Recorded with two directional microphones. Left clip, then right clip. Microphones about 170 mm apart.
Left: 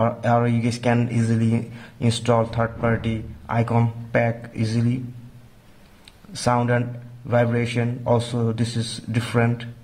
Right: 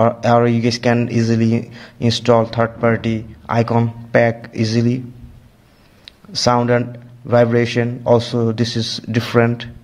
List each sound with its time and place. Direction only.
0.0 s a man's voice: 30° right (ahead or behind)
6.3 s a man's voice: 25° right (ahead or behind)